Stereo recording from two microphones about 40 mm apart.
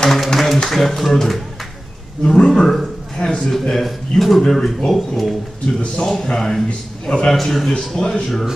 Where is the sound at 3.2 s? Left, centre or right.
Centre.